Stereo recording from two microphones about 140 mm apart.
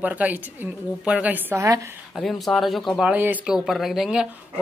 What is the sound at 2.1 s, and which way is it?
Speech, centre (ahead or behind).